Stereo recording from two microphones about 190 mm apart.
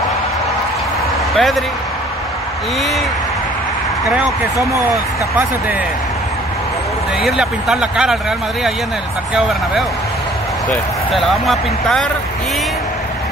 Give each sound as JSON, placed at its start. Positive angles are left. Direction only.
{"t": 1.3, "sound": "speech", "side_deg": 0}
{"t": 7.2, "sound": "speech", "side_deg": 0}
{"t": 9.3, "sound": "speech", "side_deg": 0}